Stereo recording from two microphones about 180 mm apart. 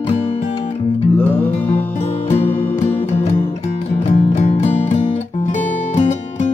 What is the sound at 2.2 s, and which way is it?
Music, 35° left (ahead or behind).